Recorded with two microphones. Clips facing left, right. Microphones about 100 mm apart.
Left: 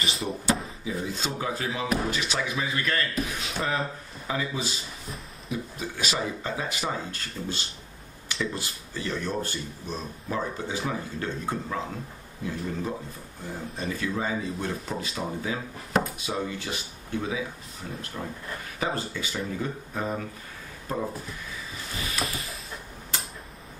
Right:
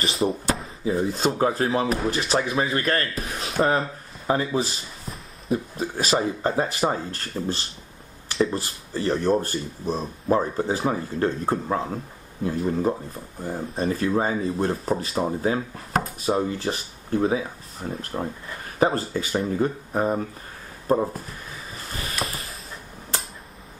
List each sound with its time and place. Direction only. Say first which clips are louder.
0.2 s speech: right 10 dB; 35° right (ahead or behind)
0.8 s speech: right 9 dB; 45° right (ahead or behind)